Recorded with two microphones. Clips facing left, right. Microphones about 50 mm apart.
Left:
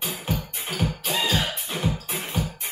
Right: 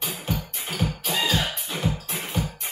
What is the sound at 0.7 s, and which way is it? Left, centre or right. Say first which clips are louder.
Music: even; centre.